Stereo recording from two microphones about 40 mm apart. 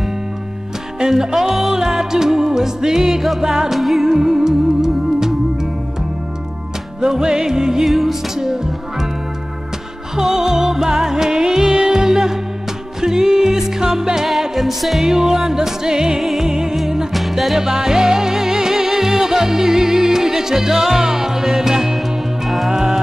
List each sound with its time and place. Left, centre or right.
0.9 s music: centre
3.7 s music: centre
4.0 s music: centre
7.0 s music: centre
7.8 s music: centre
10.1 s music: centre
16.2 s music: centre
16.7 s music: centre
22.7 s music: centre